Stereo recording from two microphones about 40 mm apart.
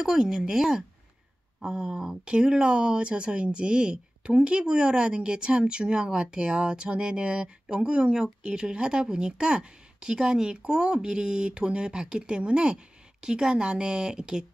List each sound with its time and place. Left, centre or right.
0.0 s speech: centre